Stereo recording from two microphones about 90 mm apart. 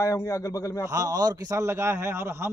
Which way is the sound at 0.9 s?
45° right (ahead or behind).